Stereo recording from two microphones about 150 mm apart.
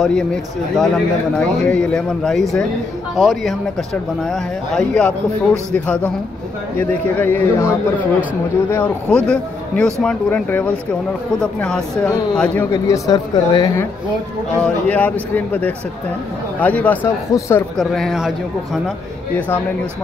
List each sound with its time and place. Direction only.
0.0 s a man's voice: 5° left (ahead or behind)
12.7 s speech: 20° left (ahead or behind)
14.6 s a man's voice: 10° left (ahead or behind)
17.7 s speech: centre (ahead or behind)